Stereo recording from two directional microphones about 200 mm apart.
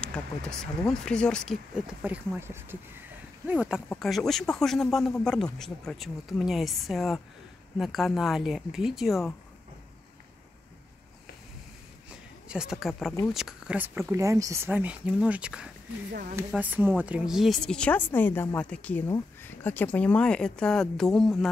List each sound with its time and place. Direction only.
0.0 s speech: 5° left (ahead or behind)
2.0 s speech: 10° right (ahead or behind)
12.4 s speech: 5° right (ahead or behind)
16.1 s speech: 45° right (ahead or behind)
16.3 s speech: 10° right (ahead or behind)